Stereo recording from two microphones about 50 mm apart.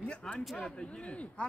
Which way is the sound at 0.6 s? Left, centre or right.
Centre.